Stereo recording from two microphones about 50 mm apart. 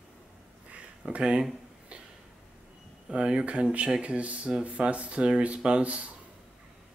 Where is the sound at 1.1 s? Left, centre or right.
Centre.